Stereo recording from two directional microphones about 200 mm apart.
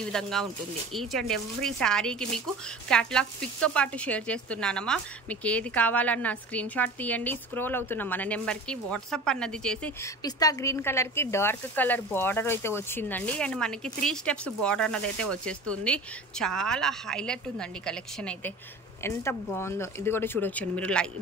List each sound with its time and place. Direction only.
0.0 s speech: 5° left (ahead or behind)
10.2 s speech: 15° left (ahead or behind)